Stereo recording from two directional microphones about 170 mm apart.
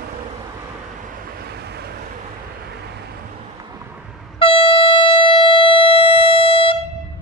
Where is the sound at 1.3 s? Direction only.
65° right (ahead or behind).